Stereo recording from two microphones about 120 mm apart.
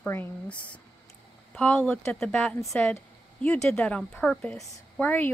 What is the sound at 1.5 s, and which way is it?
A woman's voice, 10° left (ahead or behind).